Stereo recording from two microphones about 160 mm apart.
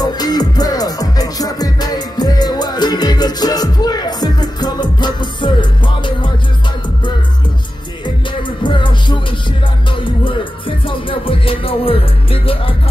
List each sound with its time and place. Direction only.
0.0 s music: 25° left (ahead or behind)
8.6 s music: 30° left (ahead or behind)
10.9 s music: 35° left (ahead or behind)